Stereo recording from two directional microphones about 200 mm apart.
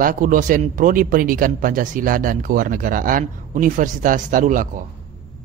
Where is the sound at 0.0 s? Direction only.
40° right (ahead or behind).